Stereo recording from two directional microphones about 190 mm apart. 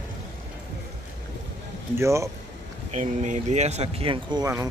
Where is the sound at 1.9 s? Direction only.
15° right (ahead or behind).